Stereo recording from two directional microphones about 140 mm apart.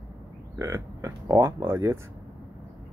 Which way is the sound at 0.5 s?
20° right (ahead or behind).